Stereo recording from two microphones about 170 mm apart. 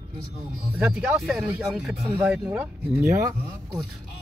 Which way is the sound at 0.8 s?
10° right (ahead or behind).